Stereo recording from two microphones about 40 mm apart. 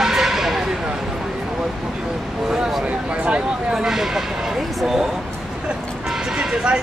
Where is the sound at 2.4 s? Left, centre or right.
Centre.